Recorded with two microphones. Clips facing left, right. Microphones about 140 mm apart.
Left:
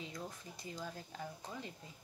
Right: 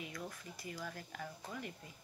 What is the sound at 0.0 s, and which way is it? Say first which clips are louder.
Speech: even; 20° left (ahead or behind).